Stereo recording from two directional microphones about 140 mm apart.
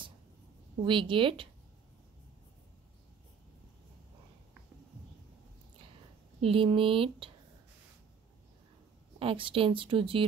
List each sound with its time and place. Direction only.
0.8 s speech: 35° right (ahead or behind)
6.4 s speech: 40° right (ahead or behind)
9.2 s speech: 40° right (ahead or behind)